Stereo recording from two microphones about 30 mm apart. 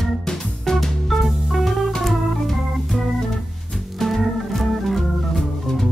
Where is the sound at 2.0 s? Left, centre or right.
Centre.